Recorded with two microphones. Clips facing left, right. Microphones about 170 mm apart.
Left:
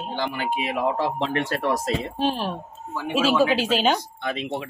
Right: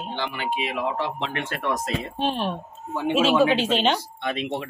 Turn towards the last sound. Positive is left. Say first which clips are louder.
# right 1 dB
turn(degrees=0)  # may be behind; listen again after turning